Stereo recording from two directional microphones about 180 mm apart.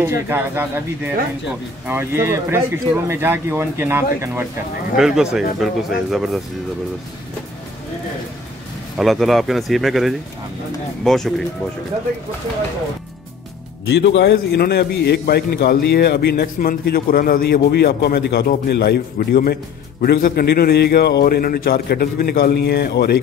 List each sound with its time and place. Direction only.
0.0 s speech: 10° right (ahead or behind)
4.9 s speech: 5° right (ahead or behind)
8.9 s speech: centre (ahead or behind)
13.8 s a man's voice: 75° left (ahead or behind)